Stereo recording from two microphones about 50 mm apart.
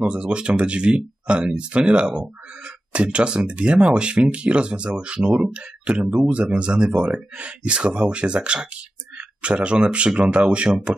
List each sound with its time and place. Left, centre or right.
0.1 s speech: right